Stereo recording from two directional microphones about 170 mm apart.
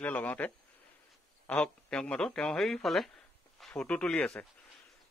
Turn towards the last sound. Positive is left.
turn(degrees=5)  # may be behind; listen again after turning